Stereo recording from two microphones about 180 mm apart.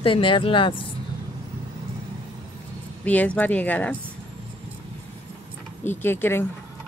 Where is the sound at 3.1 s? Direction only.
10° left (ahead or behind).